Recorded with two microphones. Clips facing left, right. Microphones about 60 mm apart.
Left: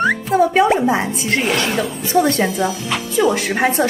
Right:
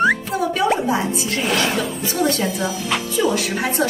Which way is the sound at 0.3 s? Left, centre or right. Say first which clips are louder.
Left 8 dB; left.